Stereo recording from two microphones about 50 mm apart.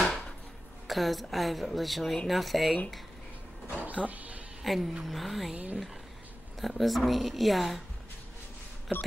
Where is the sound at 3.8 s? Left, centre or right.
Right.